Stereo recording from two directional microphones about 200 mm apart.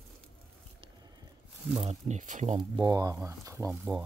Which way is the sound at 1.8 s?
35° right (ahead or behind).